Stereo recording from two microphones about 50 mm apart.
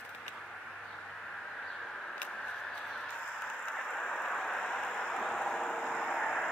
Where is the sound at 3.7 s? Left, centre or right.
Centre.